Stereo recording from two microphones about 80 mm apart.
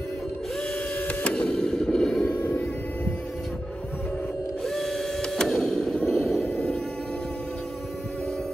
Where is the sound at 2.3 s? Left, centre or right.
Left.